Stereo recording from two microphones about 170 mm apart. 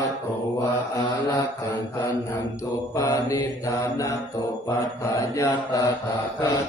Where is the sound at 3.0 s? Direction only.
20° left (ahead or behind).